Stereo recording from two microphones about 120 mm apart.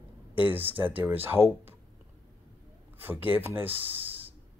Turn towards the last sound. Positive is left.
turn(degrees=-15)  # may be behind; listen again after turning